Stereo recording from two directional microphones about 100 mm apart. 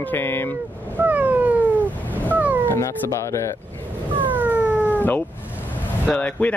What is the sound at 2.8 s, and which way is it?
Speech, 30° left (ahead or behind).